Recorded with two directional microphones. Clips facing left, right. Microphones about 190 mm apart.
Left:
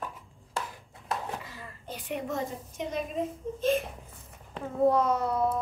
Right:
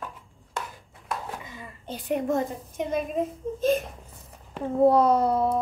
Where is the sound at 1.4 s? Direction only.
20° right (ahead or behind).